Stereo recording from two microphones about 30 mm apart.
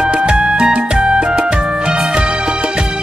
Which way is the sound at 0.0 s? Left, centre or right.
Right.